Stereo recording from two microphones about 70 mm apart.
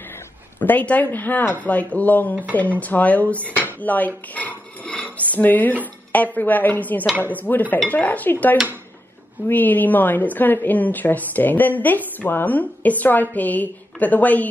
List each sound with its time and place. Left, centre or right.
0.6 s a woman's voice: left